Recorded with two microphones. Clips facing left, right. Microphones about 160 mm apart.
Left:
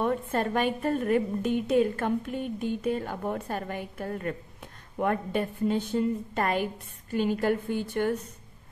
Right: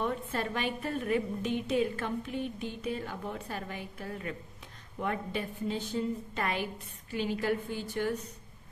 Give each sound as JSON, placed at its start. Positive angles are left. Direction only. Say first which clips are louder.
{"t": 0.0, "sound": "a woman's voice", "louder": "left 6 dB", "side_deg": 50}